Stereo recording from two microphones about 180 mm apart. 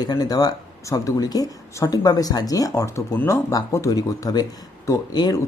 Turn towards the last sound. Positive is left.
turn(degrees=20)  # may be behind; listen again after turning